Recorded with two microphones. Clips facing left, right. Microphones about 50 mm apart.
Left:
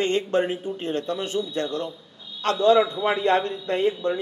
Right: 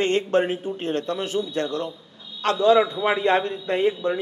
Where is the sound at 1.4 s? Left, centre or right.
Right.